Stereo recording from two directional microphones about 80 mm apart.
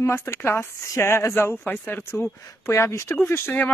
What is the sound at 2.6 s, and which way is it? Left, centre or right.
Speech, left.